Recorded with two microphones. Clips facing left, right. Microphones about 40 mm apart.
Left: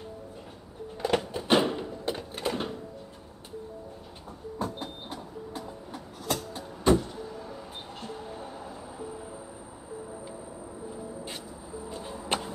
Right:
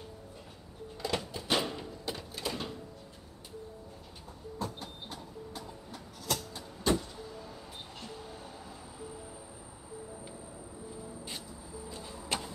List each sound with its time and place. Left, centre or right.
1.0 s a sound: left
4.6 s train: left
11.9 s music: left